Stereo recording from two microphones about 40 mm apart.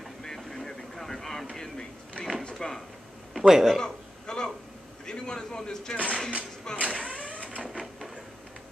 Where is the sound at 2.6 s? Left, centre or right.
Centre.